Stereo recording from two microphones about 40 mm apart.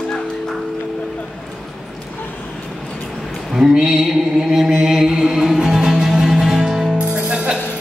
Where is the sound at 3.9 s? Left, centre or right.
Centre.